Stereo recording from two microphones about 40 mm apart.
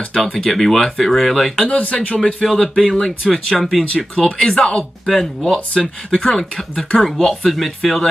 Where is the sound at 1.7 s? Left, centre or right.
Left.